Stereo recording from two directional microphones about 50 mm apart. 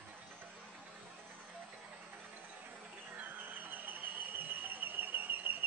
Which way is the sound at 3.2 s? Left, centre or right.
Right.